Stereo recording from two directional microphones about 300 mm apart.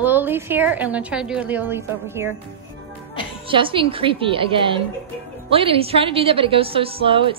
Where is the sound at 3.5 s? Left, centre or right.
Centre.